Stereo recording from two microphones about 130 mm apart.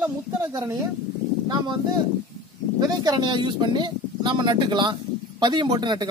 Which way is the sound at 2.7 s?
30° right (ahead or behind).